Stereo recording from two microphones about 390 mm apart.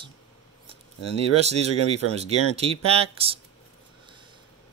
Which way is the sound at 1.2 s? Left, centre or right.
Centre.